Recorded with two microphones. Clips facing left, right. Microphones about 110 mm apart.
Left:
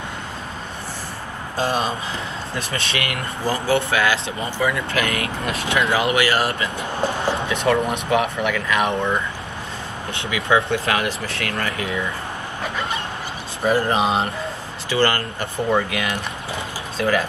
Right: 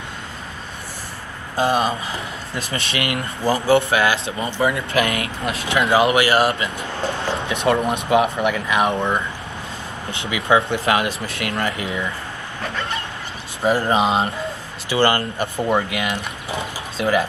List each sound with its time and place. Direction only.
1.7 s speech: 30° left (ahead or behind)
3.0 s speech: 25° right (ahead or behind)
6.8 s speech: 20° left (ahead or behind)
7.3 s speech: 25° right (ahead or behind)
13.7 s speech: 20° right (ahead or behind)